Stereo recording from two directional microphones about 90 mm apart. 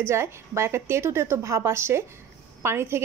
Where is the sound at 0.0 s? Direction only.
30° right (ahead or behind).